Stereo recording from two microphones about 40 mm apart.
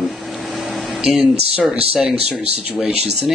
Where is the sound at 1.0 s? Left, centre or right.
Centre.